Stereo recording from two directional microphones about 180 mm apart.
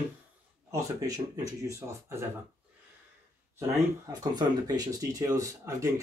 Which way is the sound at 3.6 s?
20° right (ahead or behind).